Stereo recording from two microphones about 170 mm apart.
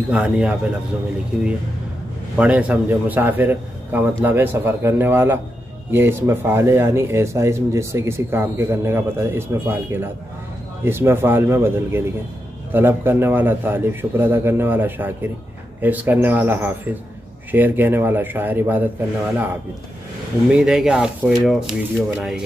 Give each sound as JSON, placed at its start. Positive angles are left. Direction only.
{"t": 0.1, "sound": "speech", "side_deg": -5}
{"t": 2.3, "sound": "speech", "side_deg": -10}
{"t": 20.4, "sound": "speech", "side_deg": -5}